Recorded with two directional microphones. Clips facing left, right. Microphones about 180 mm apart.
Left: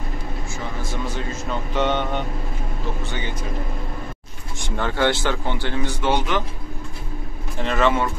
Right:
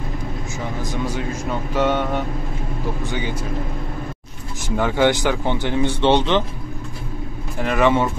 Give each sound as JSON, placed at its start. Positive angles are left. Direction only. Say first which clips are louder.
{"t": 0.8, "sound": "speech", "louder": "right 4 dB", "side_deg": -10}
{"t": 4.6, "sound": "speech", "louder": "right 4 dB", "side_deg": -10}
{"t": 7.6, "sound": "speech", "louder": "right 2 dB", "side_deg": -10}